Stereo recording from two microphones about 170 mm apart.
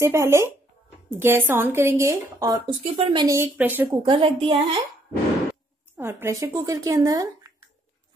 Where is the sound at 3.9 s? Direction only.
30° right (ahead or behind).